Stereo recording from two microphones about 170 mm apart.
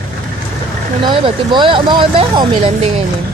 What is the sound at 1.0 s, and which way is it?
Speech, 30° right (ahead or behind).